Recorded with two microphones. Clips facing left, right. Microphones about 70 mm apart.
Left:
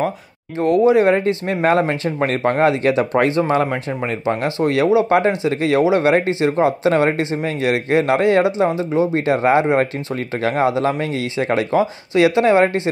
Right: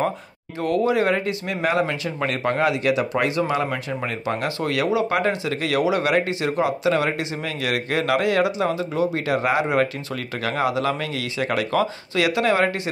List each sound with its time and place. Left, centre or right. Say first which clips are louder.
0.6 s speech: left 7 dB; left